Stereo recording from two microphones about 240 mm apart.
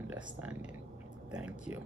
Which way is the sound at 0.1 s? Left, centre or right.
Centre.